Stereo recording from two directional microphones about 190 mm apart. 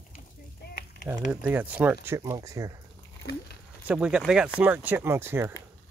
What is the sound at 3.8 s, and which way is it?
Speech, 5° right (ahead or behind).